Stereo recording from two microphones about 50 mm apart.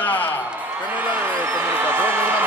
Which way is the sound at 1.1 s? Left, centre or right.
Right.